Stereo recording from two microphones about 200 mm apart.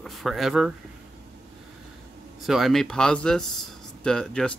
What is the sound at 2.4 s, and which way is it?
Speech, centre (ahead or behind).